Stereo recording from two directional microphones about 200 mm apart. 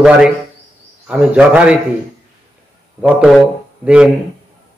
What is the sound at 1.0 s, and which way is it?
Speech, 5° right (ahead or behind).